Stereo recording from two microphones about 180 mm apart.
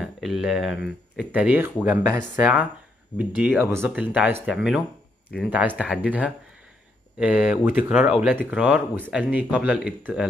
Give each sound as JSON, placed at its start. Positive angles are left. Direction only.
{"t": 0.0, "sound": "speech", "side_deg": 0}